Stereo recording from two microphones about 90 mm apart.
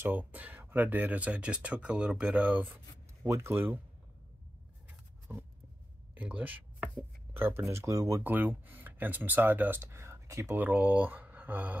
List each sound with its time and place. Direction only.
0.0 s speech: 20° right (ahead or behind)
3.3 s speech: 30° right (ahead or behind)
5.3 s speech: 25° right (ahead or behind)
6.1 s a sound: 15° right (ahead or behind)
7.3 s speech: 25° right (ahead or behind)
8.2 s speech: 20° right (ahead or behind)
10.5 s speech: 20° right (ahead or behind)